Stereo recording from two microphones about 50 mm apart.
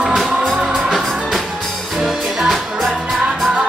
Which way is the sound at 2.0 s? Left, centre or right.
Centre.